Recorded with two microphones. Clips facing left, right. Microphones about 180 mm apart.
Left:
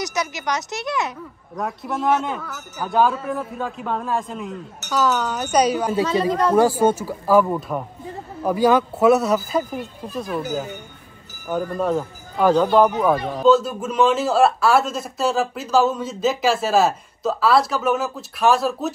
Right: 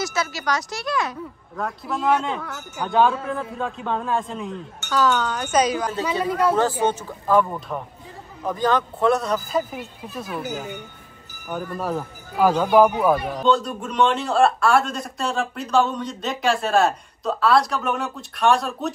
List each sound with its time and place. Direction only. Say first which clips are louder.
0.0 s a woman's voice: even; 20° left (ahead or behind)
1.6 s speech: left 1 dB; centre (ahead or behind)
11.5 s speech: left 5 dB; 5° right (ahead or behind)
13.4 s speech: left 5 dB; 5° left (ahead or behind)